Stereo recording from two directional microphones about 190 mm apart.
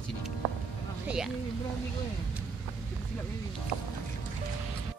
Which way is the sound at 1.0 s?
5° right (ahead or behind).